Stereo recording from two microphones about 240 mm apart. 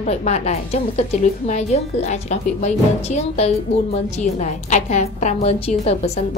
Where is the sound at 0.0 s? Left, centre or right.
Left.